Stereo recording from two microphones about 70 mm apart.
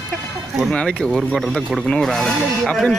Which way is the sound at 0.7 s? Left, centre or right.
Centre.